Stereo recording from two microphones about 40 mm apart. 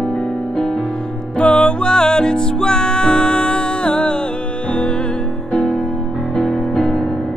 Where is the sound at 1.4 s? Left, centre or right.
Left.